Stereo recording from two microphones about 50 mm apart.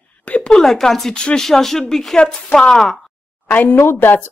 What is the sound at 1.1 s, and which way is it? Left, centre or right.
Speech, centre.